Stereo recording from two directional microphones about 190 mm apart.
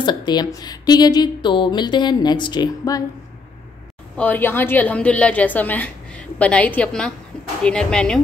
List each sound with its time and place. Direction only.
0.0 s a woman's voice: 25° left (ahead or behind)
4.2 s a woman's voice: 10° left (ahead or behind)